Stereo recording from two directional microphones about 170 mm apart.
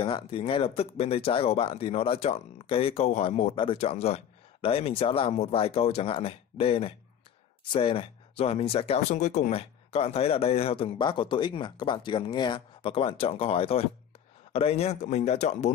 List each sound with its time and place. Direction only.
0.0 s speech: 30° left (ahead or behind)